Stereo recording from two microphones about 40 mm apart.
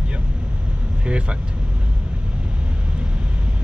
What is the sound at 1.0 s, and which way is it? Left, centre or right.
Speech, right.